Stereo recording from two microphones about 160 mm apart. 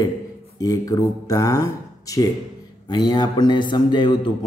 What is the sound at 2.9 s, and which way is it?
Mantra, 25° left (ahead or behind).